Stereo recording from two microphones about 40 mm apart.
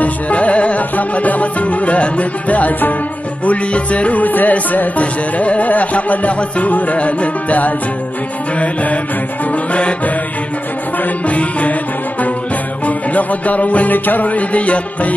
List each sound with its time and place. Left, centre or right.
0.0 s music: left
11.2 s music: left
12.8 s music: left